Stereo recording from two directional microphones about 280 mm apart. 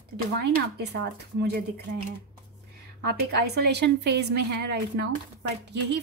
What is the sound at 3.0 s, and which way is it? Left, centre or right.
A woman's voice, right.